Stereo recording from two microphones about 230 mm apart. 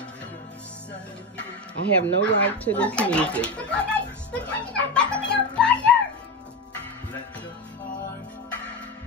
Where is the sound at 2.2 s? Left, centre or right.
Centre.